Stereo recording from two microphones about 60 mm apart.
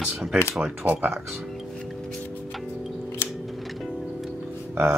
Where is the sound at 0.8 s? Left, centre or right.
Right.